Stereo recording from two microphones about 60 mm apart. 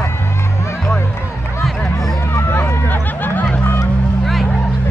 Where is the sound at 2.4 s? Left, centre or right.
Left.